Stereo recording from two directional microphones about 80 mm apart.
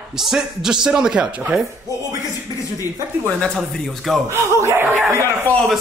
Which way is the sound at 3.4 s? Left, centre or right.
Centre.